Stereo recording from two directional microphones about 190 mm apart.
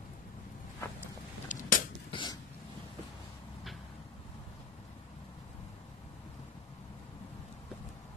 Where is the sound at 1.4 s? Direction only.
45° left (ahead or behind).